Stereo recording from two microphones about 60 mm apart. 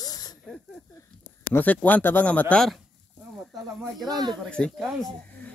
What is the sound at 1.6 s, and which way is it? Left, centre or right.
Speech, left.